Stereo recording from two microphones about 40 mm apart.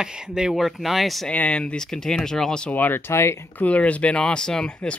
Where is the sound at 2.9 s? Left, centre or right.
Left.